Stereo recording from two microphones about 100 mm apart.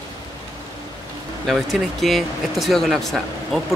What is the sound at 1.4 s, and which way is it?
Speech, centre (ahead or behind).